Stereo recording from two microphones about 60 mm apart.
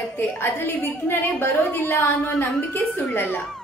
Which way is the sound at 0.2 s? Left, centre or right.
Left.